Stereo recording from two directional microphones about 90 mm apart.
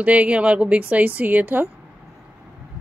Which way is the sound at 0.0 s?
15° right (ahead or behind).